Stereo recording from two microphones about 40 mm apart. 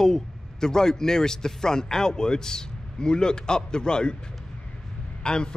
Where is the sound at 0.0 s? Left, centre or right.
Centre.